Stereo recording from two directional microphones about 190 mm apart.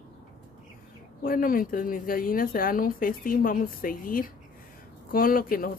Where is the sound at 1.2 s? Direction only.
50° left (ahead or behind).